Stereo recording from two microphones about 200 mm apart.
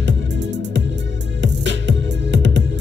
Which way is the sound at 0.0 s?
60° right (ahead or behind).